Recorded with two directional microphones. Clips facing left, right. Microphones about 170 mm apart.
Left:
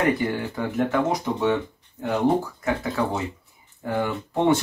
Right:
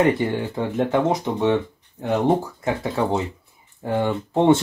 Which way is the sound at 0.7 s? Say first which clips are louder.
Right 3 dB; 25° right (ahead or behind).